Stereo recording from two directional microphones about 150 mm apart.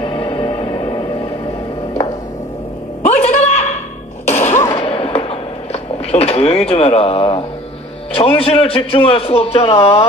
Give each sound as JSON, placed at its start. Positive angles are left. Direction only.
{"t": 0.0, "sound": "music", "side_deg": 35}
{"t": 3.0, "sound": "a sound", "side_deg": 45}
{"t": 8.1, "sound": "a man's voice", "side_deg": 40}